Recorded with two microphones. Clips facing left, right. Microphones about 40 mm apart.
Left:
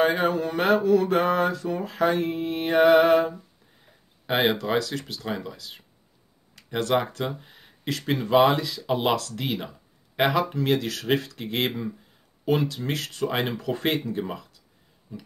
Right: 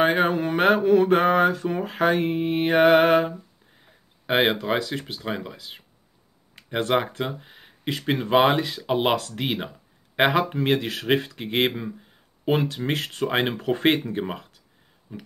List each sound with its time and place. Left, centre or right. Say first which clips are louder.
0.0 s speech: right 2 dB; right
4.4 s speech: right 1 dB; centre; by 14.6 s right
15.1 s a sound: right 1 dB; right